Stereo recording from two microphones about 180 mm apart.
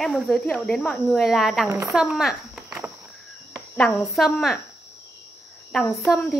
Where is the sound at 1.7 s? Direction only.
15° right (ahead or behind).